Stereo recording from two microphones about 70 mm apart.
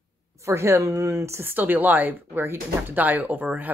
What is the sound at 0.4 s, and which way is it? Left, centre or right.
A woman's voice, right.